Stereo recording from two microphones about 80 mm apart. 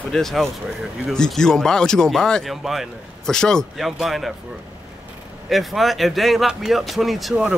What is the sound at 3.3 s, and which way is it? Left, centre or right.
Speech, centre.